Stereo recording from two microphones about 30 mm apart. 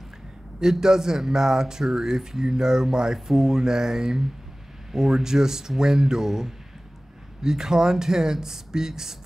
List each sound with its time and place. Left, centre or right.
0.6 s speech: right